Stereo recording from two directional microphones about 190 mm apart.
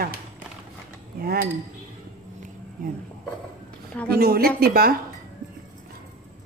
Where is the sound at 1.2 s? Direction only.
50° right (ahead or behind).